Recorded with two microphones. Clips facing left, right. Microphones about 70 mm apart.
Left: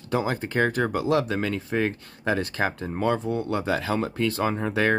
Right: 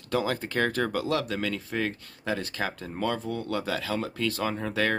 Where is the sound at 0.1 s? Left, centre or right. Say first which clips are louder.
Left 2 dB; left.